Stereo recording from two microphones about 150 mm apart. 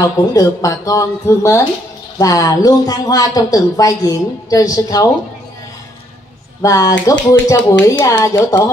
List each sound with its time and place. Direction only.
0.0 s speech: 25° left (ahead or behind)
6.6 s speech: 25° left (ahead or behind)